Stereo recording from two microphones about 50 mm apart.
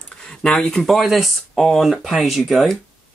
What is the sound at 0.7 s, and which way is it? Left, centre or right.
Speech, centre.